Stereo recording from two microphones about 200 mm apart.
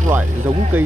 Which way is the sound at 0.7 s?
10° right (ahead or behind).